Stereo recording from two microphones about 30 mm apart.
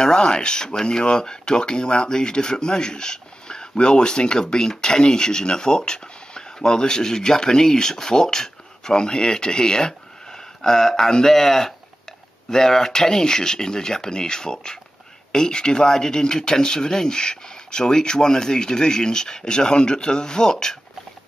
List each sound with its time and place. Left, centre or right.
0.0 s speech: left